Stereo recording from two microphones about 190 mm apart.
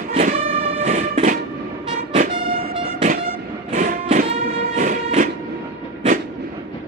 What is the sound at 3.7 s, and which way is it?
Music, 40° right (ahead or behind).